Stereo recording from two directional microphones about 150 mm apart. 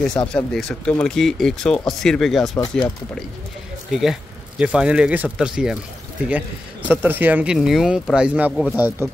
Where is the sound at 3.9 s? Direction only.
Centre (ahead or behind).